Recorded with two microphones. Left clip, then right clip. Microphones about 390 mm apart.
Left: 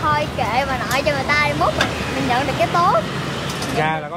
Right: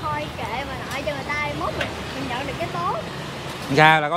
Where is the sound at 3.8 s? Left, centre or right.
Right.